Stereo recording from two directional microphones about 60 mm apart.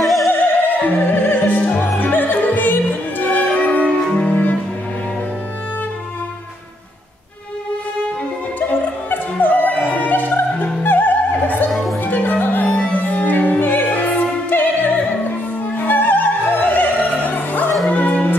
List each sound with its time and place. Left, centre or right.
0.0 s music: centre
0.3 s opera: left
2.0 s music: left
4.1 s cello: left
9.1 s music: left
15.8 s opera: left
17.8 s music: left